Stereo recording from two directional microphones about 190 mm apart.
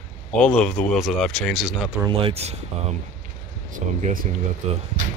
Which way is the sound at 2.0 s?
30° right (ahead or behind).